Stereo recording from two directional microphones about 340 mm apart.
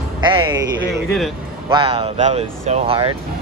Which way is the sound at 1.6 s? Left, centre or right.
Centre.